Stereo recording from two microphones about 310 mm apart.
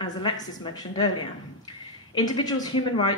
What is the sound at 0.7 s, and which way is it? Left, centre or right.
Speech, centre.